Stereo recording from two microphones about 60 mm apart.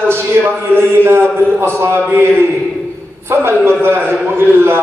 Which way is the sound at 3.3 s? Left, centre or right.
Right.